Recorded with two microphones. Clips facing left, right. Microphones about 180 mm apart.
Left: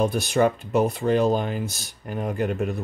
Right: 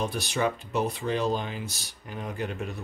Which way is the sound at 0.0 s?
50° left (ahead or behind).